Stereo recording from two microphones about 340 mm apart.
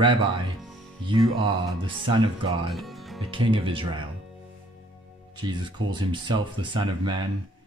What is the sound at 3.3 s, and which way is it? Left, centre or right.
Speech, centre.